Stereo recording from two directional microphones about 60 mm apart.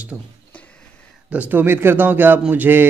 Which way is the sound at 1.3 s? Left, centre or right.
Right.